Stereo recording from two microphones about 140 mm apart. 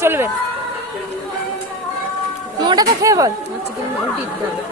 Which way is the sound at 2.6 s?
30° right (ahead or behind).